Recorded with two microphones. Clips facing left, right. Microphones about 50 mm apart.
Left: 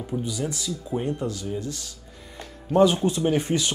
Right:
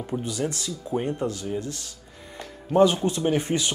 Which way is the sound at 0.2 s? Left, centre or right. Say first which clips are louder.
Right 1 dB; right.